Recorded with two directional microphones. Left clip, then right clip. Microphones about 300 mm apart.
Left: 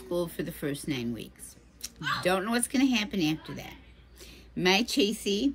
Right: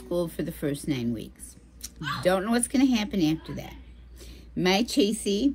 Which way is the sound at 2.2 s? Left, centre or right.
Centre.